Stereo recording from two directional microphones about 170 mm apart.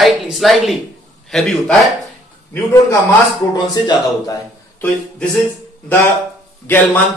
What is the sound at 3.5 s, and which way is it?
Speech, 20° left (ahead or behind).